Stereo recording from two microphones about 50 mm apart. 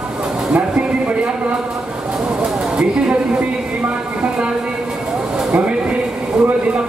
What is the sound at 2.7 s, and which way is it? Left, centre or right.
Speech, right.